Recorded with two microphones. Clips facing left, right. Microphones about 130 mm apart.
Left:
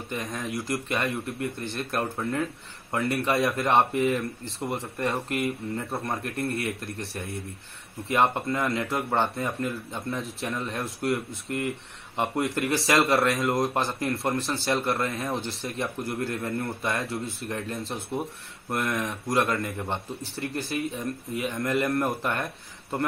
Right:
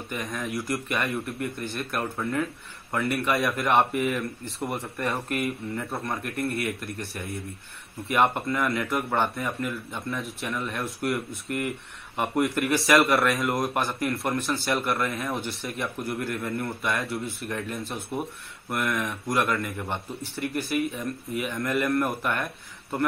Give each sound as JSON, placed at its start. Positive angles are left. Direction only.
{"t": 0.1, "sound": "speech", "side_deg": 25}